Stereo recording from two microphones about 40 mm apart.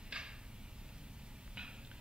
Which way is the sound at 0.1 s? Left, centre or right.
Right.